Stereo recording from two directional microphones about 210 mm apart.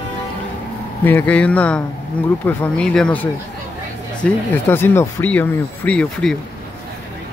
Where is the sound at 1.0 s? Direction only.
10° left (ahead or behind).